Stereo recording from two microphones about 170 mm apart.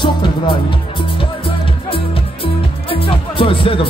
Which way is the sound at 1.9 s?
35° left (ahead or behind).